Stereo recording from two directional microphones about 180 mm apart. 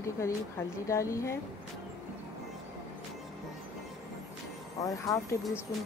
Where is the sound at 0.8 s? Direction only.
15° left (ahead or behind).